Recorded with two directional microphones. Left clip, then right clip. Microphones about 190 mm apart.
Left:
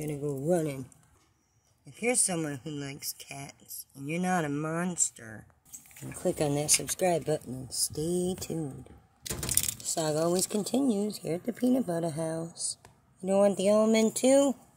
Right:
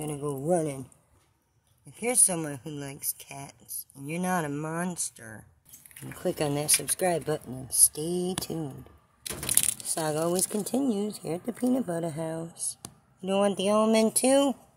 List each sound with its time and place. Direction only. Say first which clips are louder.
0.0 s speech: right 1 dB; 5° left (ahead or behind)
1.9 s speech: right 1 dB; centre (ahead or behind)
9.8 s speech: left 1 dB; 10° left (ahead or behind)
12.5 s speech: left 3 dB; 15° right (ahead or behind)
13.3 s speech: left 1 dB; centre (ahead or behind)